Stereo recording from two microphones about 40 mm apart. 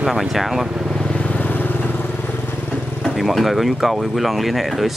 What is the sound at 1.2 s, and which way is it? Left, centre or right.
Vehicle, left.